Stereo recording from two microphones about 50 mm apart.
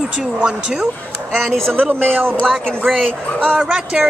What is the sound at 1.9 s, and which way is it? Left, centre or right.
Speech, right.